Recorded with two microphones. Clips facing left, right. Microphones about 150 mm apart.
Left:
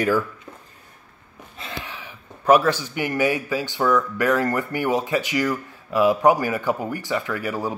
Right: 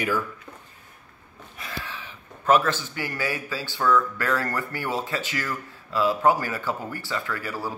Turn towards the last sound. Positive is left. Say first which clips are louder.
# left 5 dB
turn(degrees=20)  # may be behind; listen again after turning